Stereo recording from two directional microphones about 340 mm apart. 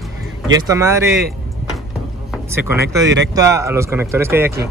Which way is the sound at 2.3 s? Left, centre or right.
Centre.